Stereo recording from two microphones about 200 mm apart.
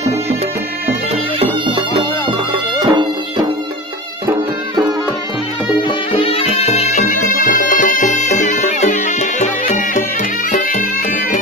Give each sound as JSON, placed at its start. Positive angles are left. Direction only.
{"t": 1.4, "sound": "music", "side_deg": -25}
{"t": 5.8, "sound": "music", "side_deg": 25}